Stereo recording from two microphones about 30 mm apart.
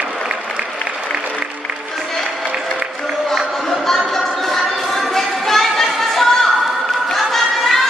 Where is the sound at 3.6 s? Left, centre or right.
Centre.